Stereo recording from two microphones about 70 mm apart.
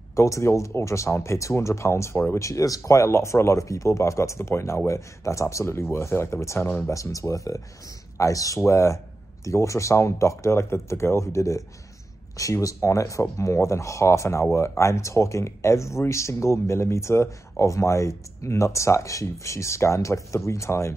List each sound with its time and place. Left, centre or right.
0.1 s speech: left
6.9 s speech: left